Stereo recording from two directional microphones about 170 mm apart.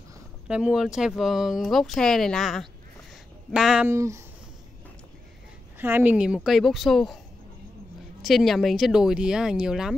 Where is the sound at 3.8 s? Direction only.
15° right (ahead or behind).